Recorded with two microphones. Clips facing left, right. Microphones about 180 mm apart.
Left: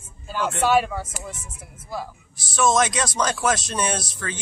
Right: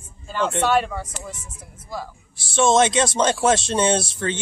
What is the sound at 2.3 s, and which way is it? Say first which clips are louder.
Speech: right 3 dB; 25° right (ahead or behind).